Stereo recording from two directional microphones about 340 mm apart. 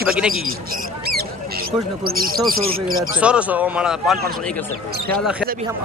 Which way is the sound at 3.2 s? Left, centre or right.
Centre.